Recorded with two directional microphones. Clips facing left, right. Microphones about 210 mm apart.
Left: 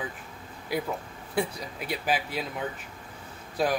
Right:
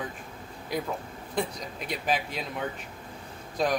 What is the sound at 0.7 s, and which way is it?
A man's voice, 5° left (ahead or behind).